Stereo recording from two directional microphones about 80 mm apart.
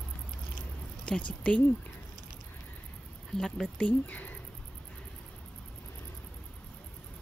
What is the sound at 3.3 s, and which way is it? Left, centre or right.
Speech, centre.